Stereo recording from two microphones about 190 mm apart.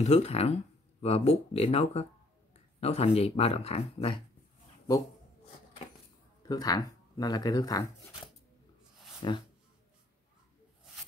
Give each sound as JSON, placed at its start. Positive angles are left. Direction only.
{"t": 0.0, "sound": "speech", "side_deg": 35}
{"t": 6.4, "sound": "speech", "side_deg": 20}
{"t": 9.2, "sound": "speech", "side_deg": 25}